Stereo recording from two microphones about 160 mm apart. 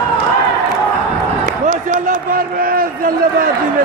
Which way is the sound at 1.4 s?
55° right (ahead or behind).